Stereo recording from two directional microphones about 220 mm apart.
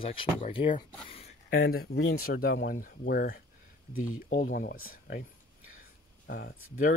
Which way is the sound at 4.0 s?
70° left (ahead or behind).